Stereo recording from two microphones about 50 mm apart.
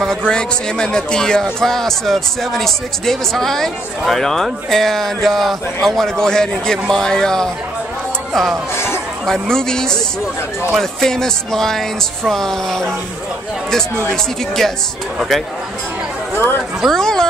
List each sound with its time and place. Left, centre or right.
0.0 s speech: centre
8.7 s chatter: left
9.2 s speech: centre
16.3 s speech: left
16.9 s a sound: centre